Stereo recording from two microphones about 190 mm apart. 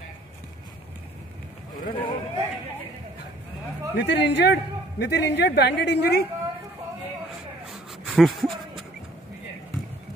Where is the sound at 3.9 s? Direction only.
65° left (ahead or behind).